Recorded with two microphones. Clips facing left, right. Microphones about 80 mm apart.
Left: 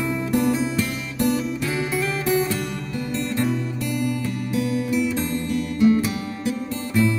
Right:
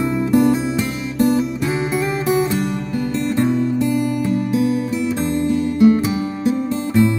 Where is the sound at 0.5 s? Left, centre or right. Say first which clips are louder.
Right 3 dB; right.